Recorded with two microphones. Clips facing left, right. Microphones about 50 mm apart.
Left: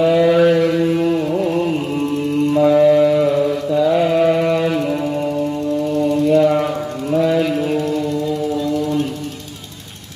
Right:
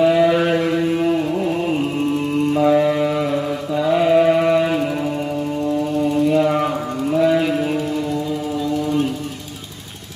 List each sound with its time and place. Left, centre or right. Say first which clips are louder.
0.0 s a sound: left 2 dB; centre
1.3 s carnatic music: left 2 dB; centre
2.5 s mantra: left 5 dB; centre
6.1 s music: left 3 dB; centre